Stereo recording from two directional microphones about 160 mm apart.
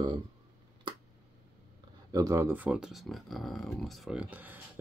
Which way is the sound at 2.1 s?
20° right (ahead or behind).